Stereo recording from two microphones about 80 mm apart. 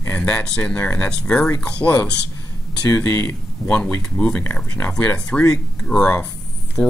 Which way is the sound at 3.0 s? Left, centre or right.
Left.